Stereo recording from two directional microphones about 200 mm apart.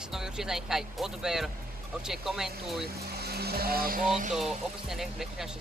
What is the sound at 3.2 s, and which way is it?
Speech, 50° right (ahead or behind).